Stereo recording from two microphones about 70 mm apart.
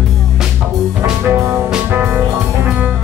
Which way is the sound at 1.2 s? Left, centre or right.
Right.